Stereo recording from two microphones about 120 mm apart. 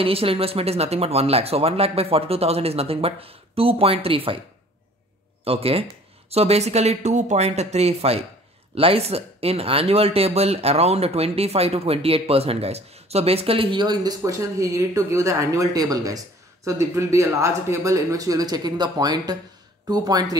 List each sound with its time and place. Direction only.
0.0 s speech: 50° right (ahead or behind)
5.4 s speech: 55° right (ahead or behind); by 20.3 s 35° right (ahead or behind)